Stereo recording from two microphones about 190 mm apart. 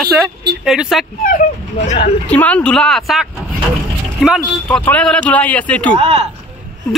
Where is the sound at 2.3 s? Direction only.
10° left (ahead or behind).